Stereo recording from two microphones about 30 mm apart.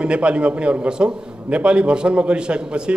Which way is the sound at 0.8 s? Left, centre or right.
Right.